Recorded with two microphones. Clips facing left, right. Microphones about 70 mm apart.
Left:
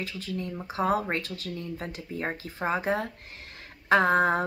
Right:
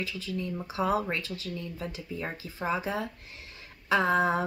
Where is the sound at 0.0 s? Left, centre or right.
Left.